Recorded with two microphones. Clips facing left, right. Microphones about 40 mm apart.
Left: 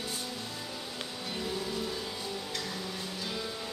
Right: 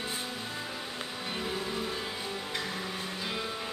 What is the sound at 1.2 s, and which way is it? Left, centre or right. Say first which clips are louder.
Music: right 1 dB; right.